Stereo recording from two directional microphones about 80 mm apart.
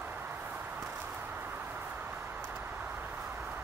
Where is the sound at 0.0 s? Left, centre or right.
Right.